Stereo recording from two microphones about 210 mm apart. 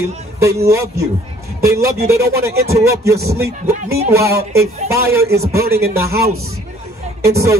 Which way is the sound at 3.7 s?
35° right (ahead or behind).